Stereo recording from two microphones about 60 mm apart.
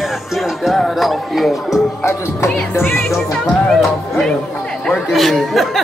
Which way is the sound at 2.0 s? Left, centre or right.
Left.